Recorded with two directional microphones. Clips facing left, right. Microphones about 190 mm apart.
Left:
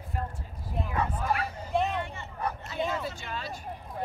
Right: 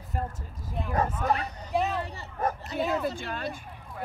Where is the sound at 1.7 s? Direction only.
Centre (ahead or behind).